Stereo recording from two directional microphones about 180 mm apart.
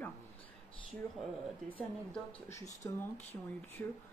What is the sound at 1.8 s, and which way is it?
Speech, 10° left (ahead or behind).